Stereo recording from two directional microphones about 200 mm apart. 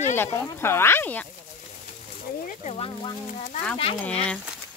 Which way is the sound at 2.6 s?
30° left (ahead or behind).